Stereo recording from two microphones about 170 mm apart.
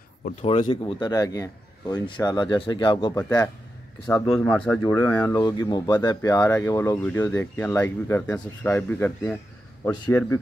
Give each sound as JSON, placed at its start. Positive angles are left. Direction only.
{"t": 0.5, "sound": "a man's voice", "side_deg": 30}
{"t": 4.4, "sound": "speech", "side_deg": 10}